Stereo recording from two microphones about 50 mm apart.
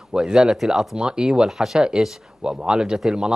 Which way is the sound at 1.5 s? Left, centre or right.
Centre.